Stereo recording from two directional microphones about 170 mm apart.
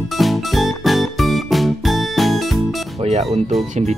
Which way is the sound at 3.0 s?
40° right (ahead or behind).